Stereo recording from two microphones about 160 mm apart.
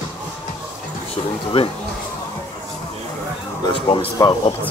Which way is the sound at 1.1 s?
35° left (ahead or behind).